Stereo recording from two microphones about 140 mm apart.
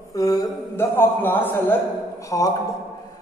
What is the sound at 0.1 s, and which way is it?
A man's voice, 25° left (ahead or behind).